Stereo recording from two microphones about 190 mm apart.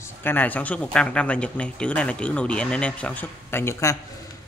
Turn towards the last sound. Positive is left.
turn(degrees=15)  # may be behind; listen again after turning